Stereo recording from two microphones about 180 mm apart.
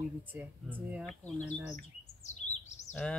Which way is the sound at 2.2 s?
40° left (ahead or behind).